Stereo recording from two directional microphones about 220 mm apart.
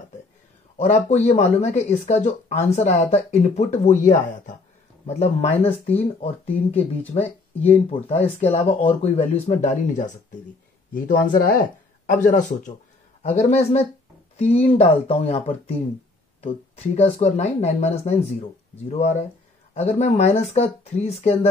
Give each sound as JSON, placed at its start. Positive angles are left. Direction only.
{"t": 0.7, "sound": "speech", "side_deg": 30}